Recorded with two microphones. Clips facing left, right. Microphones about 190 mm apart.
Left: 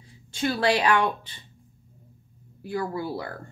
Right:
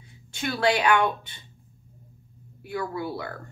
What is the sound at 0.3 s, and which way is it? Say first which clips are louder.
A woman's voice: left 1 dB; 30° left (ahead or behind).